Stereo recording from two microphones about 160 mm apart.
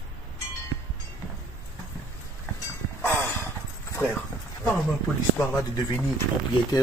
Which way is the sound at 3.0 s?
15° left (ahead or behind).